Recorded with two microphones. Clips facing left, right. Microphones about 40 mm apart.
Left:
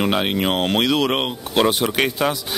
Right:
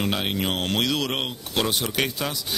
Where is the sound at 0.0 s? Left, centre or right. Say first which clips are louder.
Left 6 dB; left.